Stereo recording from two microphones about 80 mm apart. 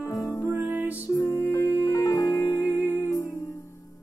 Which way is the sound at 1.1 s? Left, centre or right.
Left.